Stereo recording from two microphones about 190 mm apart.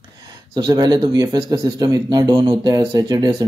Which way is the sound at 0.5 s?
20° right (ahead or behind).